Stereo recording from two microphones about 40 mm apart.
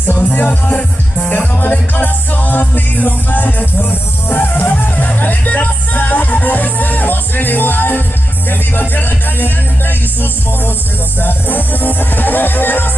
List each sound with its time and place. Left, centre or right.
0.0 s music: left
11.1 s music: left